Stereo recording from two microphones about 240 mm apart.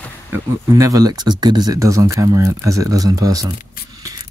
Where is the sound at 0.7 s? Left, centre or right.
Centre.